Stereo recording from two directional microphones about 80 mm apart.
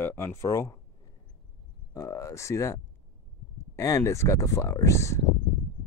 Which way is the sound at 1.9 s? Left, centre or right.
Left.